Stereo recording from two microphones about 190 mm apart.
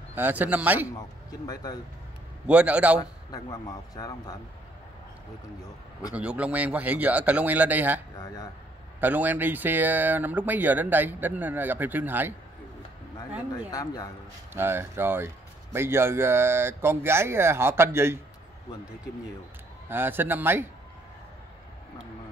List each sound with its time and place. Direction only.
0.1 s speech: 10° right (ahead or behind)
0.9 s speech: 20° left (ahead or behind)
2.4 s speech: 5° right (ahead or behind)
3.0 s speech: 20° left (ahead or behind)
6.1 s speech: 5° right (ahead or behind)
8.2 s speech: 20° left (ahead or behind)
9.0 s speech: 10° right (ahead or behind)
13.7 s speech: 20° left (ahead or behind)
14.5 s speech: 10° right (ahead or behind)
19.9 s speech: 10° right (ahead or behind)